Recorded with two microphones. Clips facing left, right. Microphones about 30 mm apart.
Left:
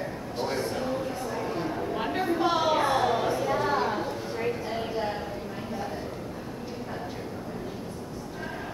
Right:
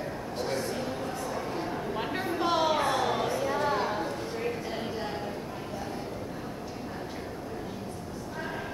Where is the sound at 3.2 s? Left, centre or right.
Centre.